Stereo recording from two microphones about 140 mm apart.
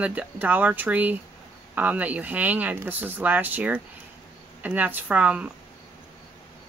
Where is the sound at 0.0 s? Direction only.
10° right (ahead or behind).